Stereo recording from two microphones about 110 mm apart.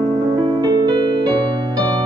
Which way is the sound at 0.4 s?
40° right (ahead or behind).